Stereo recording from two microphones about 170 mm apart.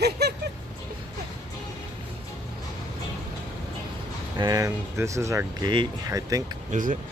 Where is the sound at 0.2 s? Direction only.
75° right (ahead or behind).